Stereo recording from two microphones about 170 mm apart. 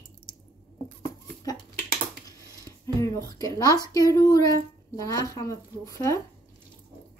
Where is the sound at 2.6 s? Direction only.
20° left (ahead or behind).